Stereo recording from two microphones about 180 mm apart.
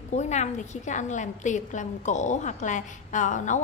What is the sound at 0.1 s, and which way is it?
A woman's voice, 40° left (ahead or behind).